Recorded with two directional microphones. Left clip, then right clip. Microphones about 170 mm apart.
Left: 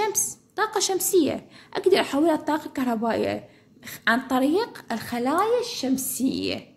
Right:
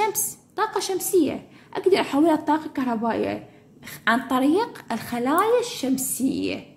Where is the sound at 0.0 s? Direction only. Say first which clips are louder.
Right 1 dB; 15° left (ahead or behind).